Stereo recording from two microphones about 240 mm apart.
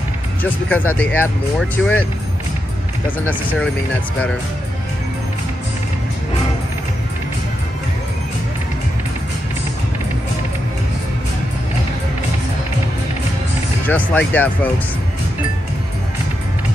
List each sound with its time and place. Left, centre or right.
0.4 s speech: centre
13.8 s speech: centre